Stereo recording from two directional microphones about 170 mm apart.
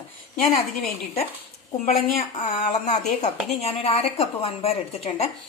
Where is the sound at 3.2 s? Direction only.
40° left (ahead or behind).